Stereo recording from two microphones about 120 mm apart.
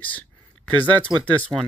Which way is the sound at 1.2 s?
10° left (ahead or behind).